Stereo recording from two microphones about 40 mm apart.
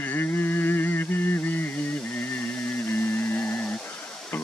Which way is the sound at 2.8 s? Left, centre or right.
Left.